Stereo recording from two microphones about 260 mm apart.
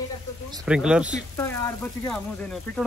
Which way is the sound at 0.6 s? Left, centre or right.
Centre.